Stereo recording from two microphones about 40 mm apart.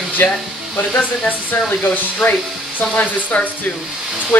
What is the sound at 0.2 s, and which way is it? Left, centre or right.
Speech, left.